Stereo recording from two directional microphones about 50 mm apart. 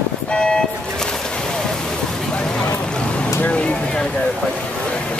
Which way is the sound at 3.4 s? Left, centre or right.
Left.